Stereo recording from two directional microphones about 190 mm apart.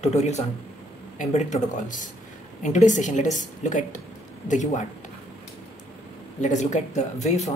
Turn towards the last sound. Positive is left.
turn(degrees=35)  # may be behind; listen again after turning